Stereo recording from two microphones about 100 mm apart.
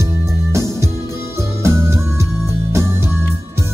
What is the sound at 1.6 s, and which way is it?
Music, 30° right (ahead or behind).